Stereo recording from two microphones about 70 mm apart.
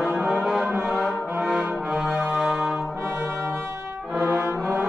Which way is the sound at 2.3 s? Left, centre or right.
Centre.